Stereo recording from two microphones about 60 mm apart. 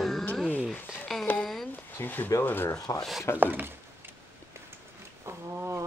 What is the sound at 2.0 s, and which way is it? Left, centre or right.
Speech, left.